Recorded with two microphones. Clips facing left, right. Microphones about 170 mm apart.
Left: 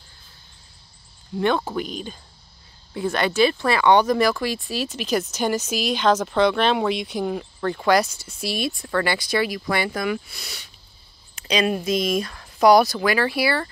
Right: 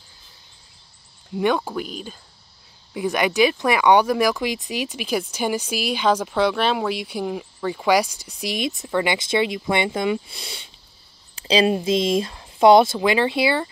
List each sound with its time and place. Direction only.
1.3 s speech: 10° right (ahead or behind)
1.6 s speech: centre (ahead or behind); by 13.7 s 20° right (ahead or behind)